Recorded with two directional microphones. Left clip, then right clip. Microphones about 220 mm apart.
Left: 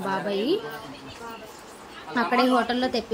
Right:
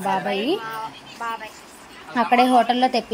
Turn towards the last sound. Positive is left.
turn(degrees=-10)  # may be behind; listen again after turning